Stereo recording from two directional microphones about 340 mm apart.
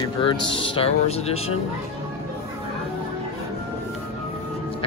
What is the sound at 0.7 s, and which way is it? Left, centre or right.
Speech, centre.